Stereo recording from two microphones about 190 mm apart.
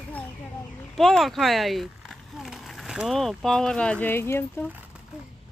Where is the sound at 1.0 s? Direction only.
Centre (ahead or behind).